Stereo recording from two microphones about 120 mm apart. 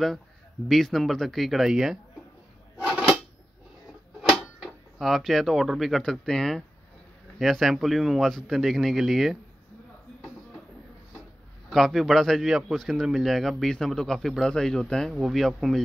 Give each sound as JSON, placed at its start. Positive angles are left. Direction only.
{"t": 0.7, "sound": "a man's voice", "side_deg": 0}
{"t": 2.8, "sound": "drawer open or close", "side_deg": -10}
{"t": 4.2, "sound": "a man's voice", "side_deg": 0}
{"t": 11.7, "sound": "a man's voice", "side_deg": 0}